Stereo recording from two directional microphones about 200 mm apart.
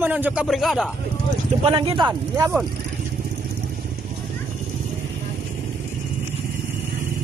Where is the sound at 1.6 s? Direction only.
30° right (ahead or behind).